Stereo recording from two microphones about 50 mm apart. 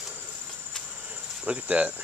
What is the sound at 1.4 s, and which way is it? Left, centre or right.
Cricket, right.